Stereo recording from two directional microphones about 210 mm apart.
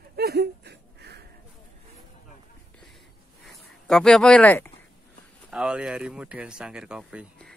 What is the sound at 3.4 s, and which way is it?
Speech, centre (ahead or behind).